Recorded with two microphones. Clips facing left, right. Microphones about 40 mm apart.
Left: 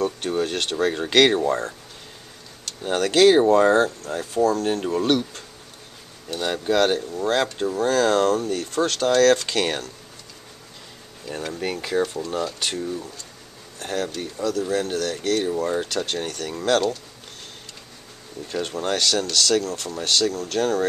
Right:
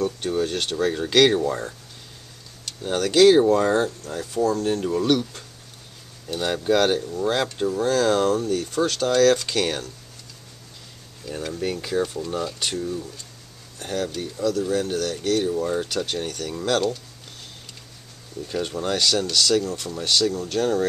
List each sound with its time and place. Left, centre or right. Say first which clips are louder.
0.0 s speech: even; centre
2.8 s speech: even; centre
6.3 s speech: right 1 dB; centre
8.2 s speech: left 1 dB; centre
8.5 s speech: even; centre
11.2 s speech: even; centre
12.0 s speech: left 2 dB; centre
12.5 s speech: even; centre
18.5 s speech: even; centre